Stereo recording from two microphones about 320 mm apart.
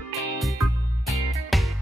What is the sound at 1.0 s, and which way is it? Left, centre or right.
Music, centre.